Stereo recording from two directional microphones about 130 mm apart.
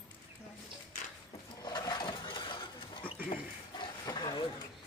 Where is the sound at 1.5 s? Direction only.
30° left (ahead or behind).